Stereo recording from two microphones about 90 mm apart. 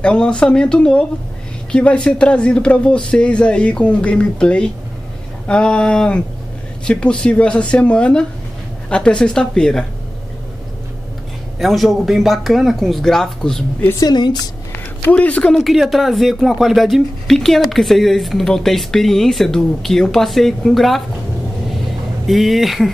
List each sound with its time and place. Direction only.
0.0 s speech: 10° left (ahead or behind)
11.6 s speech: centre (ahead or behind)
13.9 s speech: 50° left (ahead or behind)
15.0 s speech: 15° left (ahead or behind)
15.5 s speech: centre (ahead or behind)
22.2 s speech: centre (ahead or behind)